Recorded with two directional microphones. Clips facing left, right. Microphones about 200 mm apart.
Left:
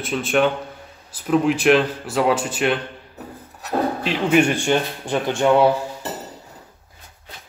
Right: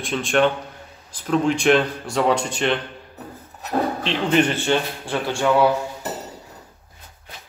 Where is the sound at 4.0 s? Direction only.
10° left (ahead or behind).